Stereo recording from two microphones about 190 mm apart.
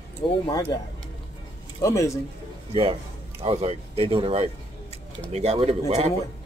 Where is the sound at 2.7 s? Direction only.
30° right (ahead or behind).